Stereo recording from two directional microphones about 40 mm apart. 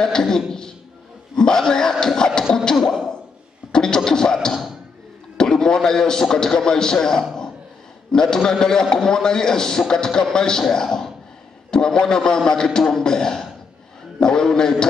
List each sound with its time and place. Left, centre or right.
0.0 s a man's voice: centre
3.7 s beatboxing: centre
5.4 s a man's voice: centre